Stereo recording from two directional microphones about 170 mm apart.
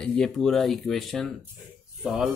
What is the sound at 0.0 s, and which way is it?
Speech, 5° left (ahead or behind).